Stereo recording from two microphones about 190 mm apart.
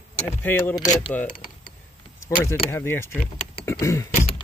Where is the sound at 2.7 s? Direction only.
10° left (ahead or behind).